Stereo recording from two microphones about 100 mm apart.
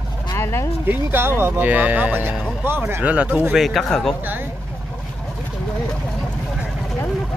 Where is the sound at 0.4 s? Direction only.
25° left (ahead or behind).